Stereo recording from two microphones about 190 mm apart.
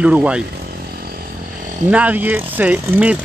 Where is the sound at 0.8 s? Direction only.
50° right (ahead or behind).